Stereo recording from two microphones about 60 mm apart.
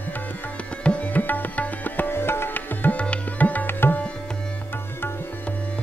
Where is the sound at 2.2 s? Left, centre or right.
Left.